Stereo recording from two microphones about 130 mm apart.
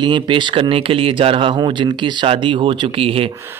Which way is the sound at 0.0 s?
35° right (ahead or behind).